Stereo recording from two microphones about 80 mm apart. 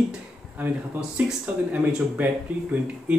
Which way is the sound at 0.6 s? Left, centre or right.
Right.